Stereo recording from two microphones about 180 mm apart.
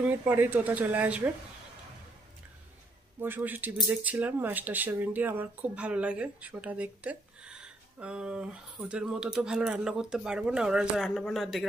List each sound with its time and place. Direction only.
0.0 s speech: 10° right (ahead or behind)
3.2 s speech: 10° right (ahead or behind)